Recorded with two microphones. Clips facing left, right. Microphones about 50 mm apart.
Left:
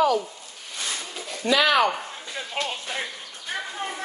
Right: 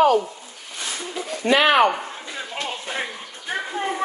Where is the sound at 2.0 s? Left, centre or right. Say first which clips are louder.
Right 2 dB; right.